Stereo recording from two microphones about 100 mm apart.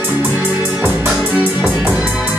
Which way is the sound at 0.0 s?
15° right (ahead or behind).